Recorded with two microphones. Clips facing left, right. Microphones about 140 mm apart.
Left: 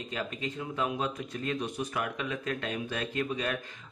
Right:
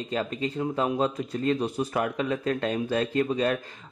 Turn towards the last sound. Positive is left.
turn(degrees=-35)  # may be behind; listen again after turning